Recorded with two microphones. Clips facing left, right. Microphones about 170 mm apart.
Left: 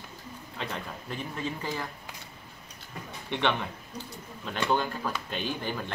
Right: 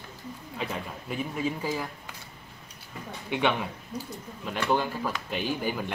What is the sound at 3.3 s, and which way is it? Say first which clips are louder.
Speech: right 2 dB; 5° right (ahead or behind).